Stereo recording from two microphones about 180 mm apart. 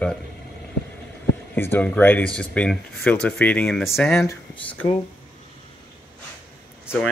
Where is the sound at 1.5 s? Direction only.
10° left (ahead or behind).